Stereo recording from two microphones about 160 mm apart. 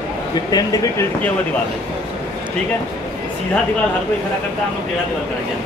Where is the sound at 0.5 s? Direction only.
25° left (ahead or behind).